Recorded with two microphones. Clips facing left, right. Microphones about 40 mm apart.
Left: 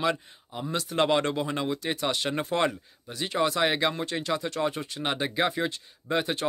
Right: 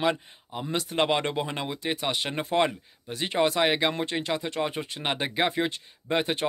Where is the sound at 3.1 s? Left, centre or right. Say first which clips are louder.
Right 2 dB; right.